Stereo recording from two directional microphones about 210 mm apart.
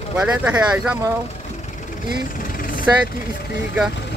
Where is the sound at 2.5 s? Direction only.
40° left (ahead or behind).